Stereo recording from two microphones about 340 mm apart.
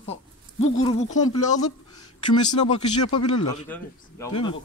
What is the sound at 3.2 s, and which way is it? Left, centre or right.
Speech, left.